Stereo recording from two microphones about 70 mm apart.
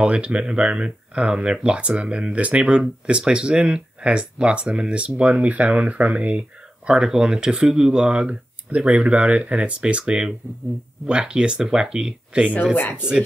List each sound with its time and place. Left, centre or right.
0.0 s speech: centre
12.7 s speech: left